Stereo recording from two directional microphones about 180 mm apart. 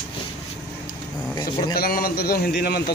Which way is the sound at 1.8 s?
55° left (ahead or behind).